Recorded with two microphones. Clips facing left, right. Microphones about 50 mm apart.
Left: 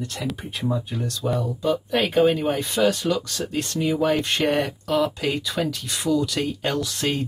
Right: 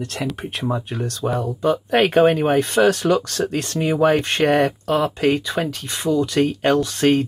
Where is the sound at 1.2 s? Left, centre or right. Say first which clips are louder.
Right 4 dB; right.